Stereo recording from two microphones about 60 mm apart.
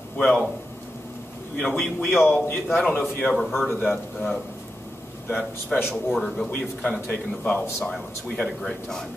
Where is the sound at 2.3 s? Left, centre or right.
Left.